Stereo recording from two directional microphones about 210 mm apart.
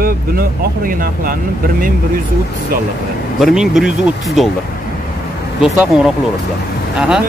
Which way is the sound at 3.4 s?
Centre (ahead or behind).